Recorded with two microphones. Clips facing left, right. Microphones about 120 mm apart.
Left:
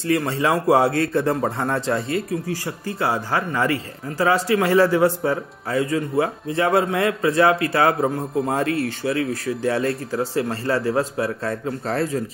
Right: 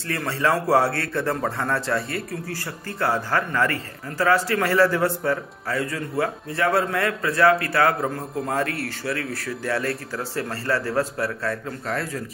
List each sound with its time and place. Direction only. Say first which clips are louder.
0.1 s a man's voice: left 3 dB; 20° left (ahead or behind)